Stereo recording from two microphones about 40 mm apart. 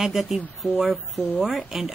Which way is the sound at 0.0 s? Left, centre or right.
Centre.